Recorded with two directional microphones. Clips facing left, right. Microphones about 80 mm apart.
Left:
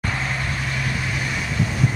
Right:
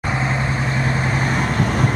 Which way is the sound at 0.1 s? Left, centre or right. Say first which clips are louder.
Right 8 dB; right.